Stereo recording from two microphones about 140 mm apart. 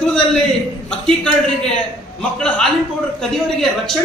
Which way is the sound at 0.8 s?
5° left (ahead or behind).